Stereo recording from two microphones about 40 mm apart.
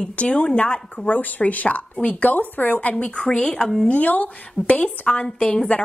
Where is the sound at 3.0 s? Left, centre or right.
Left.